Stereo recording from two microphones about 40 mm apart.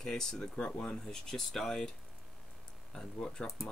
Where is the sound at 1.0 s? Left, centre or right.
Centre.